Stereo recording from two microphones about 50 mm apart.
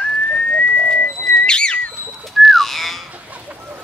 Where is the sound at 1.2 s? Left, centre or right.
Centre.